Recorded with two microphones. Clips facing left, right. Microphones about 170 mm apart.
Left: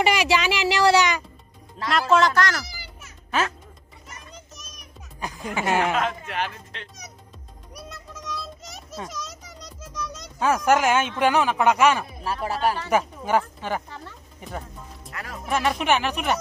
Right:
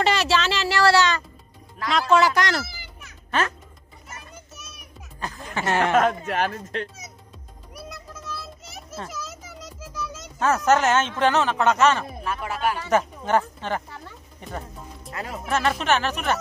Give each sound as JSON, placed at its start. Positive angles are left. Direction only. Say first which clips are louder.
{"t": 0.0, "sound": "a sound", "louder": "left 1 dB", "side_deg": 10}
{"t": 1.9, "sound": "speech", "louder": "even", "side_deg": 0}
{"t": 2.3, "sound": "speech", "louder": "even", "side_deg": -20}
{"t": 4.3, "sound": "children playing", "louder": "even", "side_deg": -5}
{"t": 5.2, "sound": "speech", "louder": "left 1 dB", "side_deg": 10}
{"t": 5.9, "sound": "speech", "louder": "right 5 dB", "side_deg": -45}
{"t": 8.4, "sound": "music", "louder": "left 2 dB", "side_deg": -5}
{"t": 10.4, "sound": "speech", "louder": "even", "side_deg": 10}
{"t": 12.2, "sound": "speech", "louder": "left 2 dB", "side_deg": 35}
{"t": 12.9, "sound": "speech", "louder": "right 3 dB", "side_deg": 10}
{"t": 15.2, "sound": "speech", "louder": "right 4 dB", "side_deg": -25}
{"t": 15.8, "sound": "speech", "louder": "even", "side_deg": 15}